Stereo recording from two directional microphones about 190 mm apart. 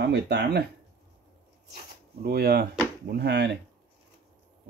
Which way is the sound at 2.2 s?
55° right (ahead or behind).